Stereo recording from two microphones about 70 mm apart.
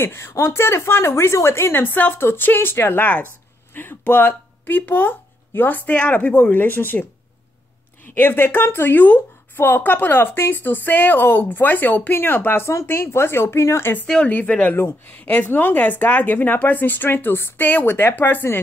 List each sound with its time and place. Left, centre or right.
0.0 s speech: left
8.1 s speech: left
14.0 s speech: centre